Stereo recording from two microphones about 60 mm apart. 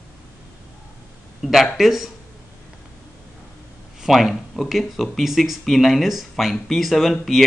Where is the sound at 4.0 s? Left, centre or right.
Centre.